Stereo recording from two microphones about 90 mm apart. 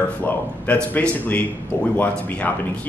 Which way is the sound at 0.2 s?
15° left (ahead or behind).